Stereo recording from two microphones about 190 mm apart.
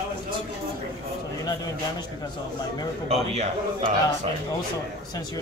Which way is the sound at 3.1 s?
35° right (ahead or behind).